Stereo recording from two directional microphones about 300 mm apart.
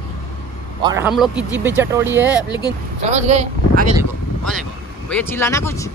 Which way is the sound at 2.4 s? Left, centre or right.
Centre.